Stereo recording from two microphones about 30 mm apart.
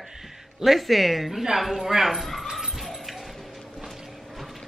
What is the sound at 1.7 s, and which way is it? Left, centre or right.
Speech, centre.